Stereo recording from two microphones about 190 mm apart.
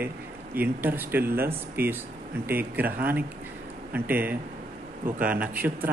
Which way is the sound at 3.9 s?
10° right (ahead or behind).